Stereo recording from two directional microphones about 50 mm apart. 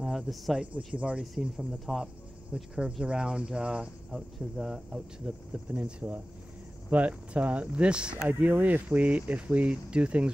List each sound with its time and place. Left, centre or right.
0.0 s speech: centre
0.9 s speech: right
1.4 s speech: centre
2.5 s speech: centre
4.1 s speech: centre
5.2 s speech: right
8.3 s speech: right